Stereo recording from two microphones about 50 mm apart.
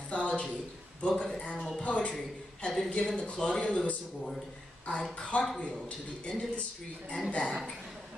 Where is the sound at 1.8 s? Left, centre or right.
Left.